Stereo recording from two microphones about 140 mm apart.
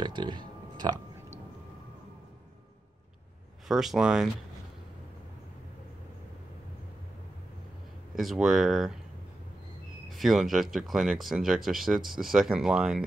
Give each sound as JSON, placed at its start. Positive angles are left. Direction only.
{"t": 0.0, "sound": "a sound", "side_deg": -30}
{"t": 3.6, "sound": "speech", "side_deg": 0}
{"t": 8.2, "sound": "speech", "side_deg": 0}
{"t": 10.0, "sound": "speech", "side_deg": 0}